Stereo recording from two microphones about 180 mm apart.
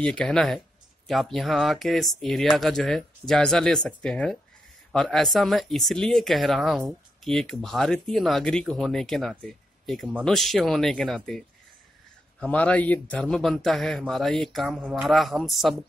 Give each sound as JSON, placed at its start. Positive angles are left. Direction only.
{"t": 0.0, "sound": "speech", "side_deg": 5}